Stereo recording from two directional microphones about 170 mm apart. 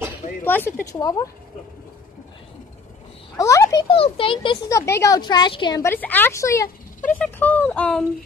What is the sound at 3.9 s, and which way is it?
Speech, 30° left (ahead or behind).